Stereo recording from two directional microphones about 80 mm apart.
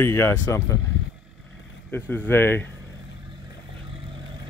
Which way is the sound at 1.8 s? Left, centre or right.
Left.